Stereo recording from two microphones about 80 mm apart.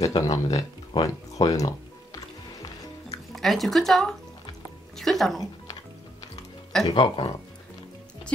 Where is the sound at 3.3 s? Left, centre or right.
Centre.